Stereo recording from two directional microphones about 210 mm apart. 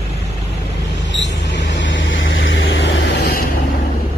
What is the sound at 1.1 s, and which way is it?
Vehicle, 60° left (ahead or behind).